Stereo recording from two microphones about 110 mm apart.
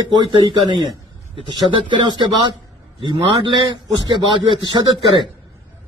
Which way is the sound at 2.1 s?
45° right (ahead or behind).